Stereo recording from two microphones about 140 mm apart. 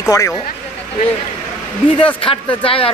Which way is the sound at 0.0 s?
25° left (ahead or behind).